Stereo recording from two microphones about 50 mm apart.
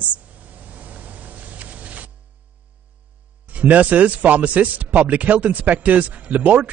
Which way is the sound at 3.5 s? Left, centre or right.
Right.